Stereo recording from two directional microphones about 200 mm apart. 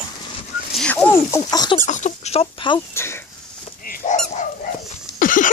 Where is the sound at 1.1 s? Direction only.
15° left (ahead or behind).